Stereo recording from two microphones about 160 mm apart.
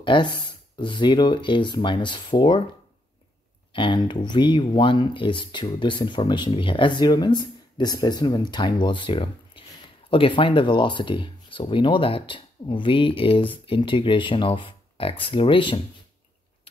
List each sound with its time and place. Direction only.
0.0 s speech: 30° left (ahead or behind)
3.7 s speech: 30° left (ahead or behind)